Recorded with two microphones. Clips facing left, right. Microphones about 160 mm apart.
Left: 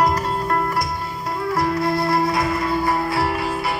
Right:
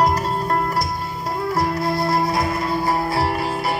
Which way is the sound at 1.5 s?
35° right (ahead or behind).